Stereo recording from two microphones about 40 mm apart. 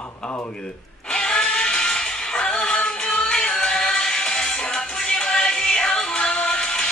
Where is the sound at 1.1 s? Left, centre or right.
Centre.